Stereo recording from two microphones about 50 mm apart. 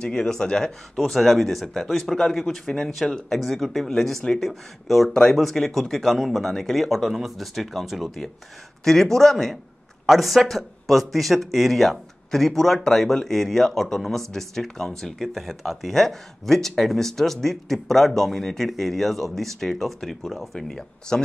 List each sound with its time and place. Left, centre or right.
0.0 s speech: centre
0.9 s speech: centre
8.8 s speech: centre